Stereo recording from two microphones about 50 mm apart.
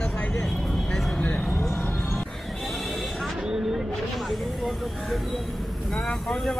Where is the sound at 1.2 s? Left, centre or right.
Left.